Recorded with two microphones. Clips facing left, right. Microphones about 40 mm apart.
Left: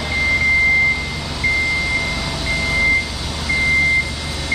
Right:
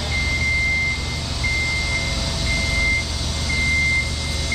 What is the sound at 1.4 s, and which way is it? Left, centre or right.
Vehicle, centre.